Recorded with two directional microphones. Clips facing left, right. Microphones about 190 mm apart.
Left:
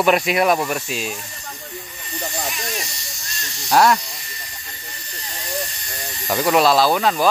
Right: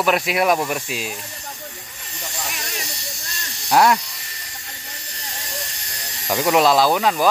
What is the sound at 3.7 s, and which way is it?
Speech, 15° right (ahead or behind).